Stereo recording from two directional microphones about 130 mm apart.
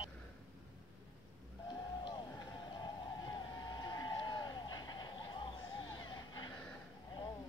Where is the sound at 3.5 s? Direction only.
30° left (ahead or behind).